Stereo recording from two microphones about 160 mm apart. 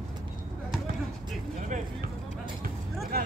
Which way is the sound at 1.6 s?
55° right (ahead or behind).